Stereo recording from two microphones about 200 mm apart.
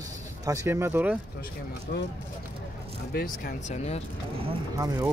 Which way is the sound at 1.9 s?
55° left (ahead or behind).